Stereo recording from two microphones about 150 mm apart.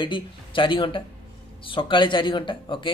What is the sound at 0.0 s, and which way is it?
Speech, 35° left (ahead or behind).